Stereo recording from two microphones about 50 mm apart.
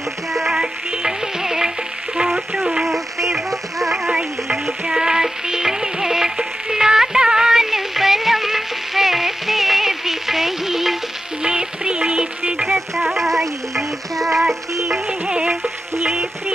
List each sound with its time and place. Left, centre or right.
0.3 s music: centre
0.6 s music: centre
2.2 s frying: centre
2.8 s frying: centre
4.8 s music: centre
12.6 s frying: centre
15.0 s music: centre
16.0 s music: centre